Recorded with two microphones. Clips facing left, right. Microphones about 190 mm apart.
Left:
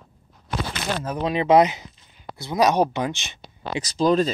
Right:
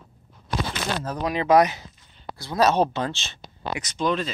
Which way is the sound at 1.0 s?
20° left (ahead or behind).